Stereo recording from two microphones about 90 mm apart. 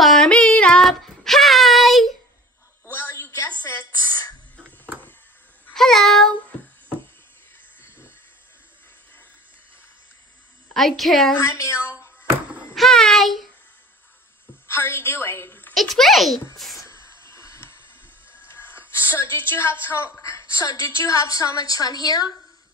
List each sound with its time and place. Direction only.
0.0 s music: 5° left (ahead or behind)
0.3 s child singing: 15° left (ahead or behind)
2.9 s a sound: 30° left (ahead or behind)
5.8 s a sound: 5° left (ahead or behind)
10.7 s a child's voice: centre (ahead or behind)
11.3 s a woman's voice: 35° left (ahead or behind)
12.7 s a sound: 5° left (ahead or behind)
14.7 s a woman's voice: 25° left (ahead or behind)
15.7 s a child's voice: centre (ahead or behind)
16.8 s hiss: 30° left (ahead or behind)
18.5 s a woman's voice: 25° left (ahead or behind); by 22.3 s 45° left (ahead or behind)